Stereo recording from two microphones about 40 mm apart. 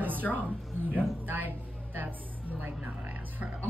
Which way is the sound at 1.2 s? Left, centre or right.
Right.